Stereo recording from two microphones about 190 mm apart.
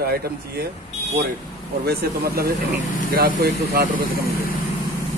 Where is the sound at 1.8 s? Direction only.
55° right (ahead or behind).